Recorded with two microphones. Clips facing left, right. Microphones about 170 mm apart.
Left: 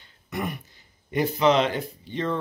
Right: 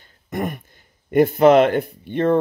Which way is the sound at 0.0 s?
45° right (ahead or behind).